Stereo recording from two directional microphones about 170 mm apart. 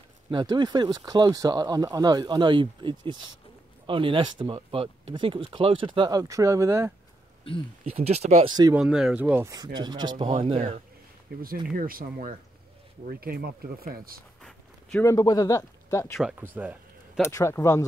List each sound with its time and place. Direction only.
0.3 s speech: 25° right (ahead or behind)
7.5 s speech: 30° left (ahead or behind)
7.8 s speech: 35° right (ahead or behind)
8.7 s speech: 5° right (ahead or behind)
9.5 s speech: 25° right (ahead or behind)
11.3 s speech: 65° right (ahead or behind)
14.4 s a sound: 5° left (ahead or behind)
15.0 s a man's voice: 20° left (ahead or behind)
16.2 s speech: 5° right (ahead or behind)
16.5 s a sound: 10° right (ahead or behind)
17.2 s a man's voice: 15° left (ahead or behind)